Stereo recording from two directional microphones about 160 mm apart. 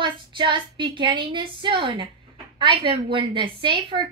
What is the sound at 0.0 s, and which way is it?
A woman's voice, 30° right (ahead or behind).